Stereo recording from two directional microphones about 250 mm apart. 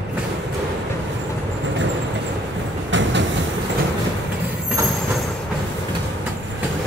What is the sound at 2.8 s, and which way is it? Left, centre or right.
Train, right.